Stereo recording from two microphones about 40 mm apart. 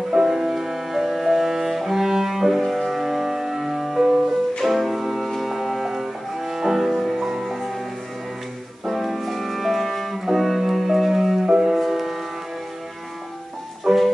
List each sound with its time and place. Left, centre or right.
0.1 s cello: centre
2.9 s music: centre
7.2 s music: right
8.8 s music: centre
13.9 s music: centre